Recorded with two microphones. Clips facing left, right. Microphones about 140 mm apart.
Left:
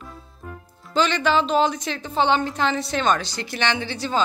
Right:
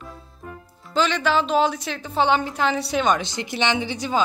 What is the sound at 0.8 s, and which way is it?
A woman's voice, 5° right (ahead or behind).